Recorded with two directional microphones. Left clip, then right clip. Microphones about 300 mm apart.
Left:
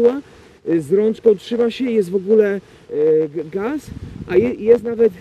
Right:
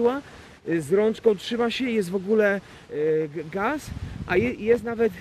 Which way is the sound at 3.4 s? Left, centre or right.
Centre.